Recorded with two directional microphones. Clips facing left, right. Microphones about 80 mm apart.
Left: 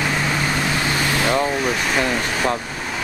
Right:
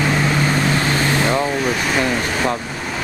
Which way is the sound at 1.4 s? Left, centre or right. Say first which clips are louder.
Right 1 dB; centre.